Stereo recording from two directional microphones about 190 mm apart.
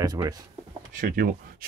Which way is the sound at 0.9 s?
45° right (ahead or behind).